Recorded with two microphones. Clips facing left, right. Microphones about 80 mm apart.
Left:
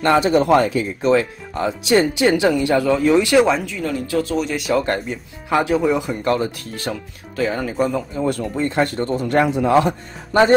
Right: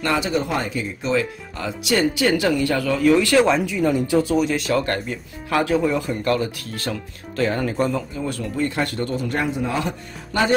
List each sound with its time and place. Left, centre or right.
0.0 s speech: left
0.4 s speech: left
1.5 s speech: left
3.4 s speech: centre
4.4 s speech: centre
4.7 s speech: centre
7.3 s speech: centre
8.5 s speech: left
9.1 s speech: left